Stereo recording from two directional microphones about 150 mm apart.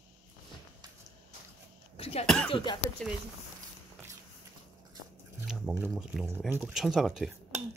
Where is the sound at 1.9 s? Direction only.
40° left (ahead or behind).